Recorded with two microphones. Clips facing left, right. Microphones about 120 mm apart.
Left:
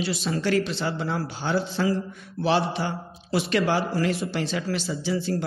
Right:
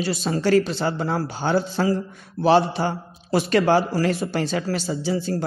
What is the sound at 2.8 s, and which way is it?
Speech, 30° right (ahead or behind).